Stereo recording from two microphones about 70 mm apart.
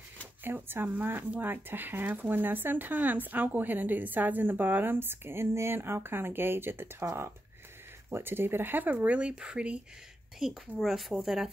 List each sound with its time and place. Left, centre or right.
0.4 s speech: right
8.1 s speech: right; by 11.5 s centre